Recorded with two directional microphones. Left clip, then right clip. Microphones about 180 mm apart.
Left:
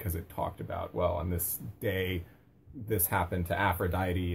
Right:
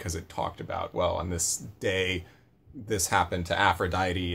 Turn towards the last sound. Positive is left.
turn(degrees=-20)  # may be behind; listen again after turning